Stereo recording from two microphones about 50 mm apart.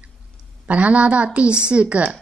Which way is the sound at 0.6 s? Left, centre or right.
Right.